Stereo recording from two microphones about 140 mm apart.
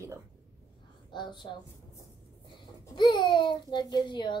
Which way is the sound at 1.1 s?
35° left (ahead or behind).